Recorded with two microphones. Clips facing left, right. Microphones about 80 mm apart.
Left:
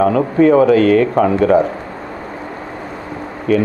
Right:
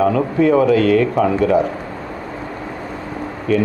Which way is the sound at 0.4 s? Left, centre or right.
Left.